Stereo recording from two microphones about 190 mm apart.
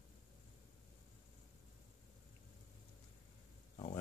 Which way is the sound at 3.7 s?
30° left (ahead or behind).